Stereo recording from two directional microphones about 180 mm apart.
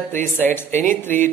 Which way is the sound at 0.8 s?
45° right (ahead or behind).